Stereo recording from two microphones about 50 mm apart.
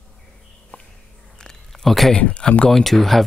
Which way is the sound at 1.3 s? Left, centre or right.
Centre.